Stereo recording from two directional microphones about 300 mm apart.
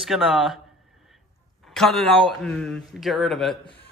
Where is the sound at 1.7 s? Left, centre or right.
Centre.